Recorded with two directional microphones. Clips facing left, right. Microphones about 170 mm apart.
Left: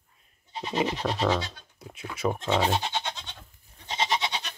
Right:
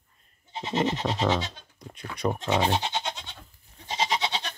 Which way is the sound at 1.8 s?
5° left (ahead or behind).